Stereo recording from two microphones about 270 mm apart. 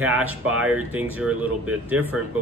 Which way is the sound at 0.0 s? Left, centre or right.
Centre.